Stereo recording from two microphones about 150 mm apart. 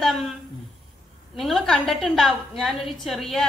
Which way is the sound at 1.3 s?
Centre (ahead or behind).